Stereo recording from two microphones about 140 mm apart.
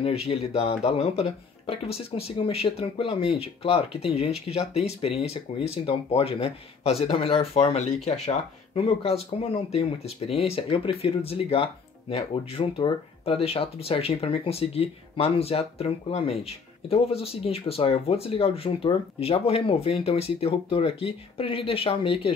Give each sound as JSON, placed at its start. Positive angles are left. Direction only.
{"t": 0.0, "sound": "speech", "side_deg": 45}